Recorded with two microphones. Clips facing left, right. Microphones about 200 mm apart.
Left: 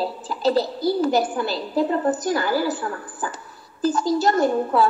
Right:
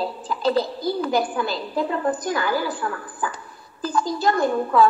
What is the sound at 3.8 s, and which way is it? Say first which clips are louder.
Speech: left 3 dB; 45° left (ahead or behind).